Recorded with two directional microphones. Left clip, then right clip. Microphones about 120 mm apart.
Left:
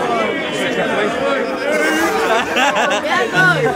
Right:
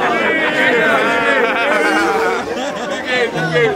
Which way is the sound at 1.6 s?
10° right (ahead or behind).